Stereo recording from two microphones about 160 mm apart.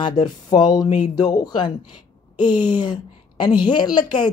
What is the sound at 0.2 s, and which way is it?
Speech, 25° left (ahead or behind).